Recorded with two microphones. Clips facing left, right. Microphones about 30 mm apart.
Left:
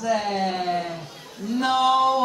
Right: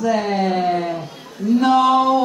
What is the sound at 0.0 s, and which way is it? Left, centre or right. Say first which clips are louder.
Speech: right 5 dB; right.